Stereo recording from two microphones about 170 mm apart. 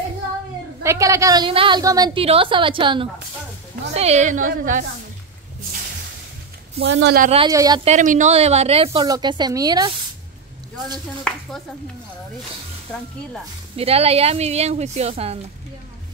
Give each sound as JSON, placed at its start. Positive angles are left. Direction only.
{"t": 0.8, "sound": "a woman's voice", "side_deg": -20}
{"t": 6.8, "sound": "speech", "side_deg": -90}
{"t": 7.2, "sound": "speech", "side_deg": -35}
{"t": 7.5, "sound": "a woman's voice", "side_deg": -20}
{"t": 7.8, "sound": "speech", "side_deg": -45}
{"t": 9.0, "sound": "a woman's voice", "side_deg": -25}
{"t": 12.9, "sound": "speech", "side_deg": 5}
{"t": 13.7, "sound": "speech", "side_deg": -35}